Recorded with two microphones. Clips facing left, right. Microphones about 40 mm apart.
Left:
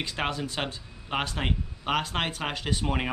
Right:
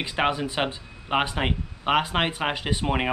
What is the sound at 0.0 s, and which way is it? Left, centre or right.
Speech, centre.